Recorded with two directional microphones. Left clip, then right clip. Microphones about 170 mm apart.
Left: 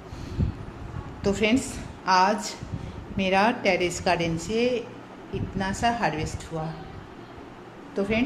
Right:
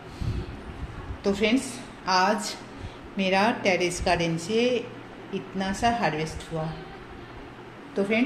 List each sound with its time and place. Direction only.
1.2 s a woman's voice: 10° left (ahead or behind); by 6.3 s 10° right (ahead or behind)
7.9 s speech: 10° right (ahead or behind)